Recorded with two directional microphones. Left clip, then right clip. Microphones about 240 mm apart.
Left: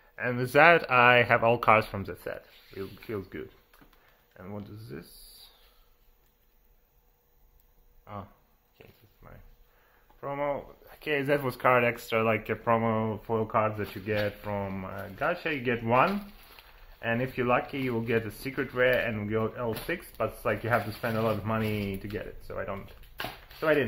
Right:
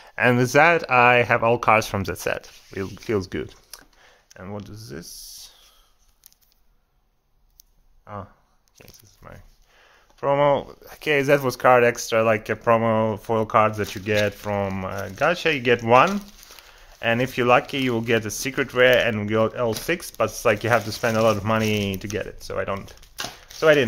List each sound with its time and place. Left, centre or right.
0.0 s a sound: right
0.5 s speech: right
1.9 s speech: right
8.0 s a sound: right
8.7 s speech: right
10.9 s speech: right